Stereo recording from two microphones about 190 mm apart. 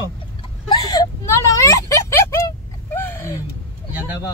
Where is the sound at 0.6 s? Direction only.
20° left (ahead or behind).